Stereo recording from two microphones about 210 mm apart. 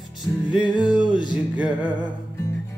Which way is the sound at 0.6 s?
20° left (ahead or behind).